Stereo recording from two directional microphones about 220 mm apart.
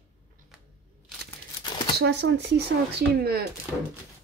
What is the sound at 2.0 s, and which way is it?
Speech, 50° right (ahead or behind).